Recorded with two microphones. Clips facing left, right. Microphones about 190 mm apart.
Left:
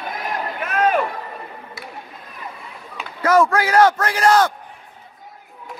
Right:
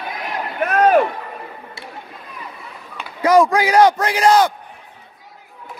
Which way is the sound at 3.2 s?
15° right (ahead or behind).